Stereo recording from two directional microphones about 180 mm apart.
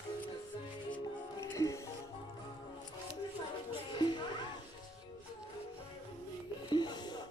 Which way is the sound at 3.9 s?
25° left (ahead or behind).